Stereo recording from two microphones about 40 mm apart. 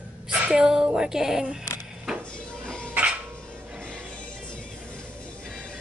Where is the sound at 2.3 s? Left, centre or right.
Left.